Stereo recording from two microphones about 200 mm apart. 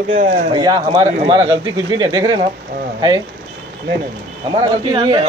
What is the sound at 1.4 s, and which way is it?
Speech, 70° right (ahead or behind).